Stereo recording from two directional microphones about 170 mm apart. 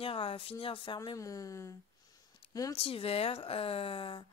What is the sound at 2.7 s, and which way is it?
Speech, 35° left (ahead or behind).